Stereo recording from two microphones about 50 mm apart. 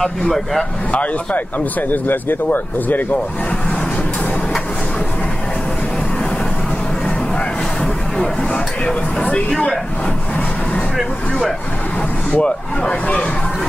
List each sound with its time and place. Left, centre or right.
0.0 s speech: centre
0.9 s speech: left
8.8 s speech: left
11.0 s vehicle: centre
12.4 s speech: left